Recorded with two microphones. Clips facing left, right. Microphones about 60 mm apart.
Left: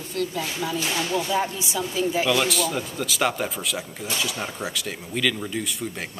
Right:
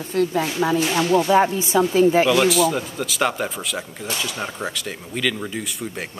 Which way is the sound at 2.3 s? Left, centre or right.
Centre.